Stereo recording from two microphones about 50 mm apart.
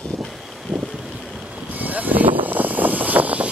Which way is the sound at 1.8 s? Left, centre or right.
Right.